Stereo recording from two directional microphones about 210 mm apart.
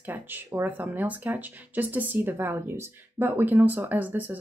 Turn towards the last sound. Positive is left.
turn(degrees=-10)  # may be behind; listen again after turning